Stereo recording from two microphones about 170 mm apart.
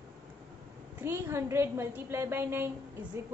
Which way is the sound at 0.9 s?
15° right (ahead or behind).